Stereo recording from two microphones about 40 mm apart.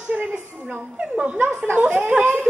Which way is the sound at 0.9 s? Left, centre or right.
Right.